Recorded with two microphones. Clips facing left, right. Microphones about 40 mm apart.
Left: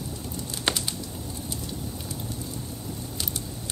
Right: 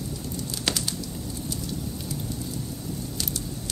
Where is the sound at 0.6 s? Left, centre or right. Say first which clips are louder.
Left 2 dB; left.